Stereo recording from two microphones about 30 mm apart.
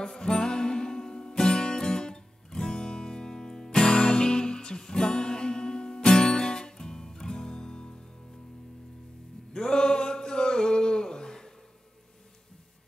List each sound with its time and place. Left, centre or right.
0.0 s music: left
7.5 s music: left
9.5 s a sound: left